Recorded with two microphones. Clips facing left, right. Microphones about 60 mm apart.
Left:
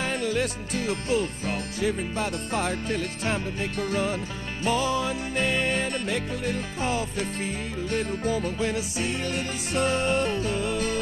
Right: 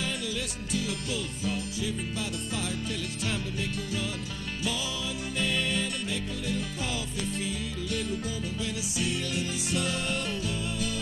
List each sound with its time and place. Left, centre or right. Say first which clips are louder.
0.0 s music: left 7 dB; left